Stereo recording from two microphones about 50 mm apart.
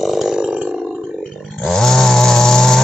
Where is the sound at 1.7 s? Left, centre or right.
Centre.